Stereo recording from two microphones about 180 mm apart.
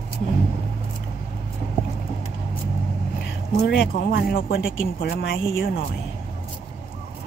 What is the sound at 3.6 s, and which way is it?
Speech, 70° left (ahead or behind).